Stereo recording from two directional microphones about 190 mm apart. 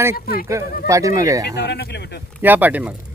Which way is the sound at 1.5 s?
60° left (ahead or behind).